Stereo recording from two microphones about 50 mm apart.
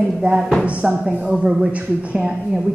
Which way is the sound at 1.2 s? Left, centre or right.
Centre.